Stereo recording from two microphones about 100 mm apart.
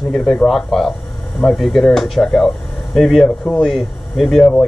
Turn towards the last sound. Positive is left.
turn(degrees=5)  # may be behind; listen again after turning